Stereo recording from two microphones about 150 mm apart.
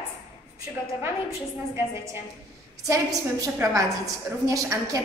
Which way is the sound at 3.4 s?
20° right (ahead or behind).